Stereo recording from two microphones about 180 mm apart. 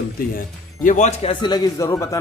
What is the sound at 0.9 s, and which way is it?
Speech, 40° left (ahead or behind).